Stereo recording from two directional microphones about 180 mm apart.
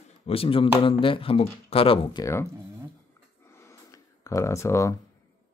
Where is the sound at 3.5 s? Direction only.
15° left (ahead or behind).